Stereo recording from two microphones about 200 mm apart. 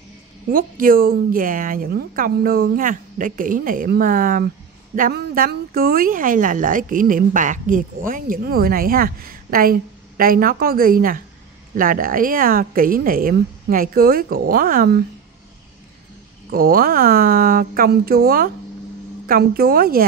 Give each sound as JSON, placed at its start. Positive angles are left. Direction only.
{"t": 0.5, "sound": "speech", "side_deg": -45}
{"t": 16.4, "sound": "speech", "side_deg": -45}